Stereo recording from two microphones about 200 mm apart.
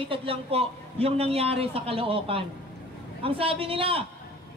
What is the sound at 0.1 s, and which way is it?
A man's voice, 25° right (ahead or behind).